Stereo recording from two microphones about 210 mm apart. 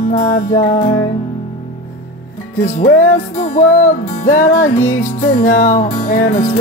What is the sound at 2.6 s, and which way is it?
Music, 40° left (ahead or behind).